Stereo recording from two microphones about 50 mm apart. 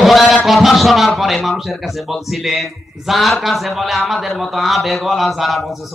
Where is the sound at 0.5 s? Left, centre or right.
Centre.